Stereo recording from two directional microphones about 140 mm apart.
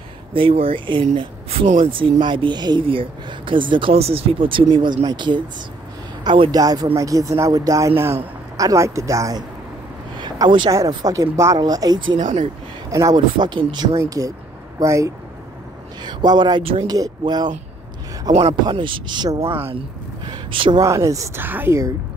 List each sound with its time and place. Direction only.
0.3 s speech: 40° right (ahead or behind); by 9.4 s 20° right (ahead or behind)
10.1 s a sound: 35° right (ahead or behind)
10.7 s speech: 25° right (ahead or behind)
12.2 s speech: 60° right (ahead or behind)
12.9 s speech: 25° right (ahead or behind)
18.5 s speech: 35° right (ahead or behind)
20.2 s a sound: 35° right (ahead or behind)
20.8 s speech: 20° right (ahead or behind)